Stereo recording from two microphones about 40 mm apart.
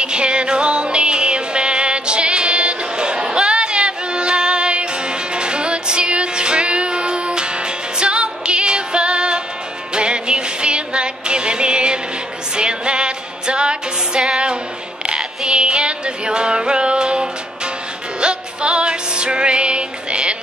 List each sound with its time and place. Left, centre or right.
0.0 s music: right